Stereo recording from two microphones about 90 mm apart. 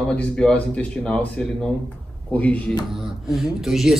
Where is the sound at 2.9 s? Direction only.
5° right (ahead or behind).